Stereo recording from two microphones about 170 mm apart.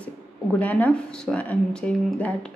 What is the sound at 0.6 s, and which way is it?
Speech, 10° left (ahead or behind).